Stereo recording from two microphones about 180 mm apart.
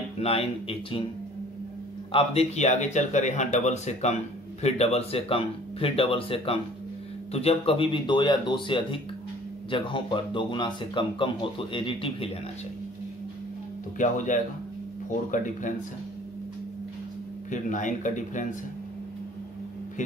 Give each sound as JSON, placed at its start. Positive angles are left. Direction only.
{"t": 0.2, "sound": "speech", "side_deg": 35}
{"t": 2.1, "sound": "speech", "side_deg": 35}
{"t": 13.9, "sound": "speech", "side_deg": 45}
{"t": 17.5, "sound": "speech", "side_deg": 45}